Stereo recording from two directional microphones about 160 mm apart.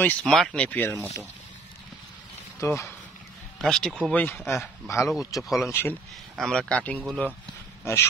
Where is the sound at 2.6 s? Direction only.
15° left (ahead or behind).